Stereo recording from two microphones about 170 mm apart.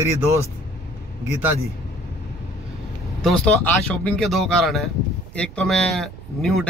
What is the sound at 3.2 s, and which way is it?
Speech, 5° left (ahead or behind).